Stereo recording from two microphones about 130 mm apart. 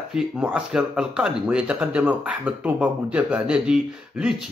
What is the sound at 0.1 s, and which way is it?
Speech, 5° right (ahead or behind).